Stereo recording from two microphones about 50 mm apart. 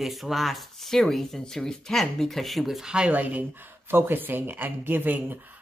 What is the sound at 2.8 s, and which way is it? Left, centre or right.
Speech, centre.